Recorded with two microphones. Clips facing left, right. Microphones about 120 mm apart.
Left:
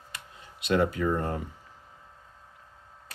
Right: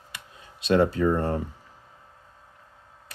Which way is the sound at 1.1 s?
35° right (ahead or behind).